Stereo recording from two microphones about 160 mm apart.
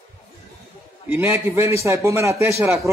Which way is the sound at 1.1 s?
15° right (ahead or behind).